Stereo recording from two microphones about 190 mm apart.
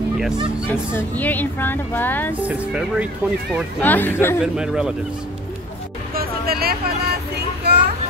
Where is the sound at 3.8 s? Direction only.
10° left (ahead or behind).